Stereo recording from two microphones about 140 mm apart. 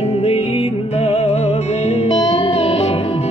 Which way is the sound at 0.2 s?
45° left (ahead or behind).